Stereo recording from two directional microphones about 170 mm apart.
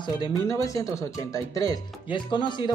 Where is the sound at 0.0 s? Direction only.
25° left (ahead or behind).